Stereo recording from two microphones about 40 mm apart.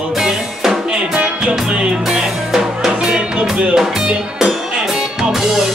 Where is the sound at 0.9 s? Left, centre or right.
Right.